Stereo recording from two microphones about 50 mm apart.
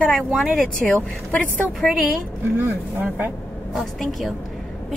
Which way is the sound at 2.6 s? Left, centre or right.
Right.